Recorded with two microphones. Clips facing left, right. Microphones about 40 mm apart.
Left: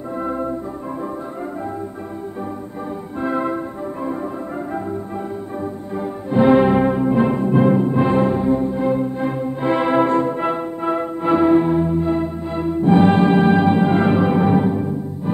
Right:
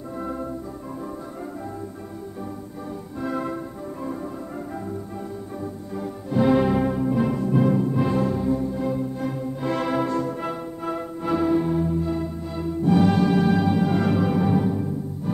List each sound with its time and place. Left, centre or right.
0.2 s music: left
3.2 s music: left
5.9 s music: left